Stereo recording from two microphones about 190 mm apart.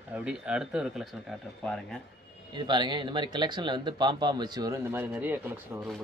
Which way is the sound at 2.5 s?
25° right (ahead or behind).